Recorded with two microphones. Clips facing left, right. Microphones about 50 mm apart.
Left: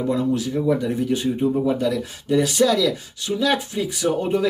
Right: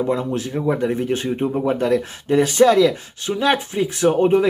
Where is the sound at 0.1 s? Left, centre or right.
Right.